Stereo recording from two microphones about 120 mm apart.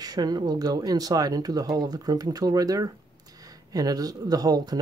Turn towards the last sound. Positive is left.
turn(degrees=-30)  # may be behind; listen again after turning